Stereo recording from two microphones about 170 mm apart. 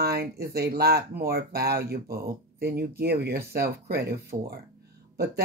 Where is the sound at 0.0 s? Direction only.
70° right (ahead or behind).